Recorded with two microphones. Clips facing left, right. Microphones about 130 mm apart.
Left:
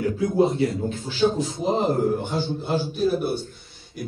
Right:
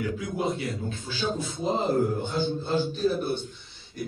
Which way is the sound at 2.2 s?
10° left (ahead or behind).